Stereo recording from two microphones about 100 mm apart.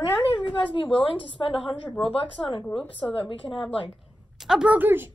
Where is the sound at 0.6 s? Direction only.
60° left (ahead or behind).